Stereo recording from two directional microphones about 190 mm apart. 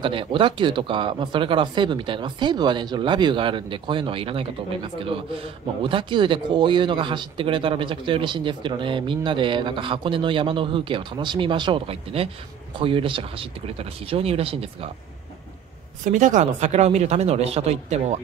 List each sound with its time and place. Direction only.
0.0 s speech: 25° right (ahead or behind)
16.0 s speech: 40° right (ahead or behind)